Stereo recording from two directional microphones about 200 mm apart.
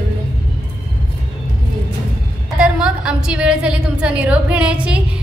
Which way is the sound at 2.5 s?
5° right (ahead or behind).